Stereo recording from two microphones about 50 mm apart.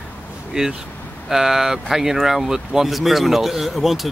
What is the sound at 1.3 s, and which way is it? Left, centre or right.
Speech, centre.